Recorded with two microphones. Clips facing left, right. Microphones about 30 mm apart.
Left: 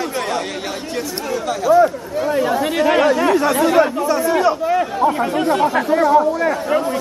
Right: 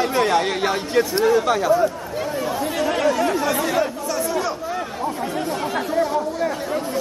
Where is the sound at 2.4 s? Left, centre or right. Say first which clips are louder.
Left 6 dB; left.